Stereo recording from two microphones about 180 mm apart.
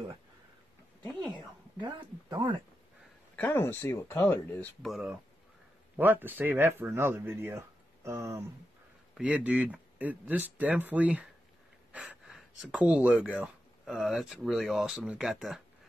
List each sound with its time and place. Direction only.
1.8 s speech: 25° right (ahead or behind)
3.3 s speech: 10° left (ahead or behind)
4.8 s speech: centre (ahead or behind)